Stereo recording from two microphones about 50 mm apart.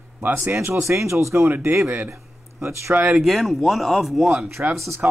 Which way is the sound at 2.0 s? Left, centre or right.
Right.